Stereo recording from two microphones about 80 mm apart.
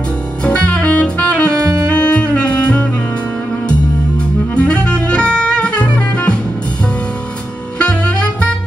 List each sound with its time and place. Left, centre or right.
0.4 s saxophone: centre
1.5 s music: right
1.9 s music: centre
4.6 s music: centre
7.8 s saxophone: centre